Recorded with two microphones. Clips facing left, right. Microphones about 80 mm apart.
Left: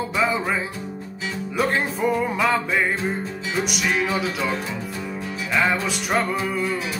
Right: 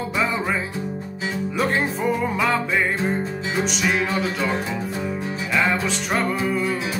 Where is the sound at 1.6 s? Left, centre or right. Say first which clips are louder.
Left 1 dB; centre.